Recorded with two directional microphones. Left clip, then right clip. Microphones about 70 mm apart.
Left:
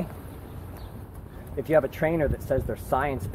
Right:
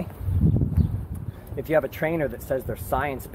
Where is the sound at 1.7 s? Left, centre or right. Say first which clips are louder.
Even; right.